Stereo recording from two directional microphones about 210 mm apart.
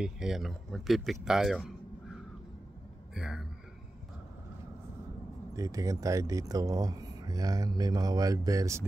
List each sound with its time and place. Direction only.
0.0 s speech: centre (ahead or behind)
3.2 s a sound: 5° right (ahead or behind)
5.6 s speech: 15° right (ahead or behind)